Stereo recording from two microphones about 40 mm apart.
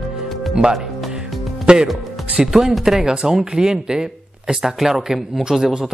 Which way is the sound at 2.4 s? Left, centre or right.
Centre.